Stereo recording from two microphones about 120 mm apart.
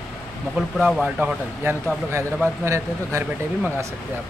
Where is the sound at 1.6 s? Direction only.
20° right (ahead or behind).